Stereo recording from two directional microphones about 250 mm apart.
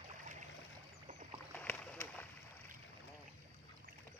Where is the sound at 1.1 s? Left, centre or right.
Right.